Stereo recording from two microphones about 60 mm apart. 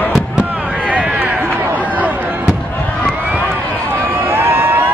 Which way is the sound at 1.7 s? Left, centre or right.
Right.